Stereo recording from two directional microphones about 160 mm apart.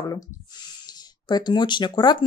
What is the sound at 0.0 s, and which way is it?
Speech, 20° left (ahead or behind).